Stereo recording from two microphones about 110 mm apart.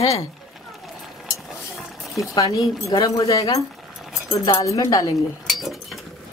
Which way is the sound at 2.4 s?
30° left (ahead or behind).